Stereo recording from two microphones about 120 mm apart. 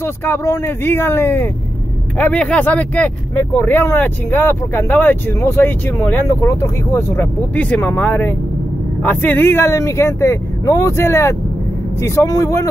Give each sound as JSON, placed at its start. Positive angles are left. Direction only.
{"t": 0.0, "sound": "speech", "side_deg": 20}